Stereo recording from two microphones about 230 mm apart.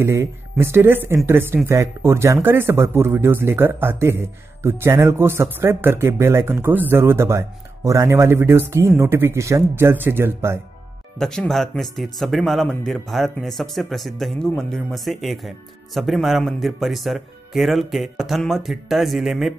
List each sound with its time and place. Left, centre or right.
0.0 s speech: centre
11.1 s speech: centre